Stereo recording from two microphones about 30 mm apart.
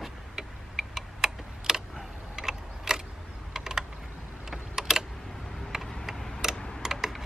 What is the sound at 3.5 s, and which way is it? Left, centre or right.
Typing, centre.